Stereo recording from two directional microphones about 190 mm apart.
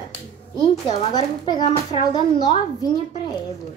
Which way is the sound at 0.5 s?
30° left (ahead or behind).